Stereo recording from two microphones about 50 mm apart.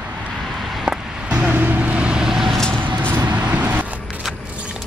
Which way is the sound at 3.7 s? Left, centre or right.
Right.